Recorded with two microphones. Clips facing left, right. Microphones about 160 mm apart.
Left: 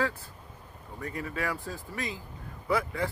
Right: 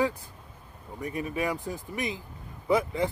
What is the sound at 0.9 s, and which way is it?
Speech, 20° right (ahead or behind).